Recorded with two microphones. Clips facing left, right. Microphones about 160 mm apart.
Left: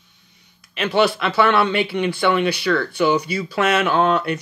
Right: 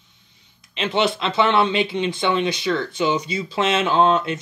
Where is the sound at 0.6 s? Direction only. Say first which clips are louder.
Left 3 dB; 20° right (ahead or behind).